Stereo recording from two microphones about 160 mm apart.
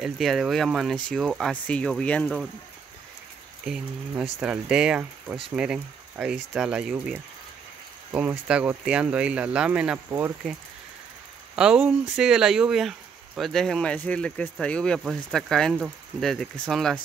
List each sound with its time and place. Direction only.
0.0 s speech: centre (ahead or behind)
4.1 s speech: 5° right (ahead or behind)
11.5 s speech: 5° right (ahead or behind)